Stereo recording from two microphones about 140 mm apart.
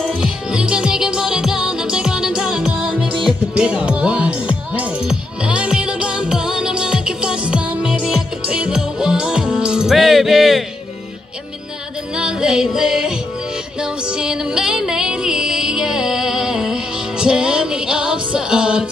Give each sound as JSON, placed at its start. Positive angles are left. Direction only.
{"t": 0.0, "sound": "music", "side_deg": -5}
{"t": 12.2, "sound": "music", "side_deg": -5}
{"t": 14.1, "sound": "music", "side_deg": -5}